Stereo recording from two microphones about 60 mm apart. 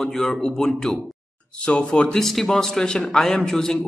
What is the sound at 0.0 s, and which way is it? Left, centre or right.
A man's voice, centre.